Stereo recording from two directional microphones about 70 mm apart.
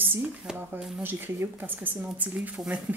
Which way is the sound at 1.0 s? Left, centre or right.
Right.